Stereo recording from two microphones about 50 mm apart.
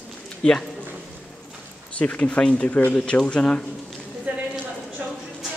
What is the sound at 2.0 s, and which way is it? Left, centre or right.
Speech, left.